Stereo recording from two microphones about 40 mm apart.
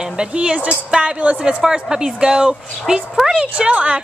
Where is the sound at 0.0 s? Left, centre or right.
Right.